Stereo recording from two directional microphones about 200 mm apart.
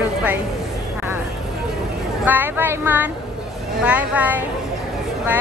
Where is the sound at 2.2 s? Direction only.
10° right (ahead or behind).